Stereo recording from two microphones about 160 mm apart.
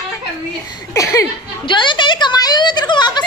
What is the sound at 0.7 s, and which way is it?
Speech, 20° left (ahead or behind).